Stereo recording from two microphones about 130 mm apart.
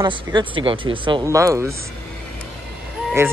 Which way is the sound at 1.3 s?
25° right (ahead or behind).